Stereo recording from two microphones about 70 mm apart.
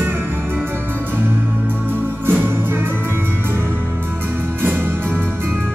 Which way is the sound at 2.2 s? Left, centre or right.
Right.